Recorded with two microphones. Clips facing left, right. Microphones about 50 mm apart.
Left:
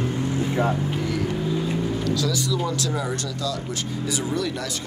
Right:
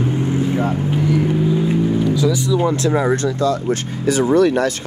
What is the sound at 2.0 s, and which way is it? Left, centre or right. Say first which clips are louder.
Speech: right 7 dB; centre.